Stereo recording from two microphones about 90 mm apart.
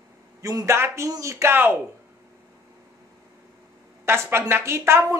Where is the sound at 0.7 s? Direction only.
30° right (ahead or behind).